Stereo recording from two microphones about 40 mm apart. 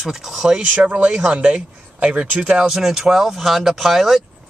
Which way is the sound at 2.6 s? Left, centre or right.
Centre.